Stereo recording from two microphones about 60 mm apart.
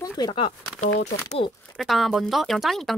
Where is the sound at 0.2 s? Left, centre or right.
Left.